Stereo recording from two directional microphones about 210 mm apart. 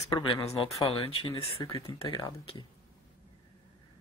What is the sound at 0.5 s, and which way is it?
Speech, 15° left (ahead or behind).